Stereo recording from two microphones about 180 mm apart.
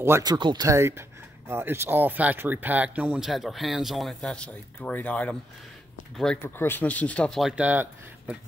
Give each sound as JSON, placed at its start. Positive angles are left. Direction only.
{"t": 0.0, "sound": "speech", "side_deg": -20}